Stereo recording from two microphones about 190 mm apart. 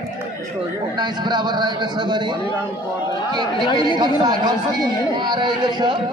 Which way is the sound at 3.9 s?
20° right (ahead or behind).